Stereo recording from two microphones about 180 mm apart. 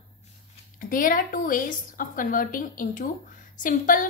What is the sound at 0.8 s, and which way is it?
A woman's voice, 50° left (ahead or behind).